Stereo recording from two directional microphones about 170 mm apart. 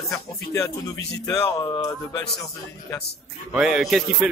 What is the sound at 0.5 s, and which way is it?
Speech, 20° left (ahead or behind).